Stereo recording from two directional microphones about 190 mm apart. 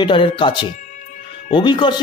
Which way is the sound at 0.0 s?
25° left (ahead or behind).